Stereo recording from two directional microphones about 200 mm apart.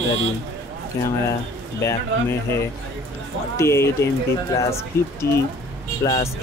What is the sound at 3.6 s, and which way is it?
Speech, 15° left (ahead or behind).